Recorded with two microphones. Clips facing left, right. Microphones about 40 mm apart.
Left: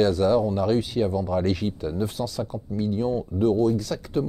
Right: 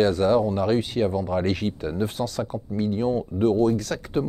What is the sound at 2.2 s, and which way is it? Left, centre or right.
Speech, right.